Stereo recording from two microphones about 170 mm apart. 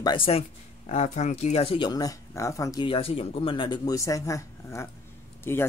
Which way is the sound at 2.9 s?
35° left (ahead or behind).